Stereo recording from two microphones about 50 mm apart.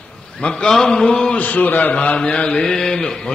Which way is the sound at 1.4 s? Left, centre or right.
Left.